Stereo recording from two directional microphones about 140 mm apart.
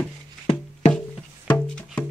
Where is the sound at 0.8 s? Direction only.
55° left (ahead or behind).